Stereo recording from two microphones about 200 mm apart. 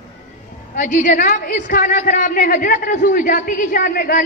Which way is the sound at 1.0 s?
45° left (ahead or behind).